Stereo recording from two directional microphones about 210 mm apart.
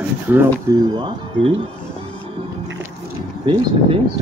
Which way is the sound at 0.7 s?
20° right (ahead or behind).